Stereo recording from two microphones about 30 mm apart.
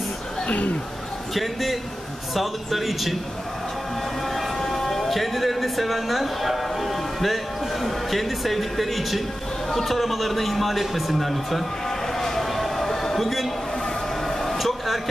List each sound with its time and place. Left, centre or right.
0.5 s speech: left
1.3 s a man's voice: centre
4.6 s a man's voice: centre
12.1 s a sound: centre
14.6 s speech: centre